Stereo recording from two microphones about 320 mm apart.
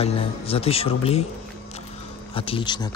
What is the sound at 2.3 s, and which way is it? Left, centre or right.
Speech, centre.